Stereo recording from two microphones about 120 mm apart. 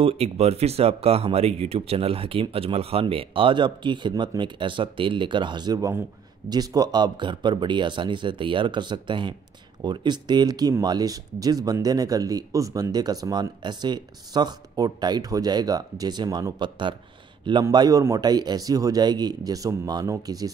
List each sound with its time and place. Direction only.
0.0 s speech: 60° right (ahead or behind); by 16.9 s 40° right (ahead or behind)
17.6 s speech: 30° right (ahead or behind)